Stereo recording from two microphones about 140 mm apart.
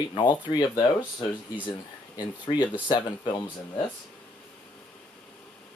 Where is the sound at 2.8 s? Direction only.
35° left (ahead or behind).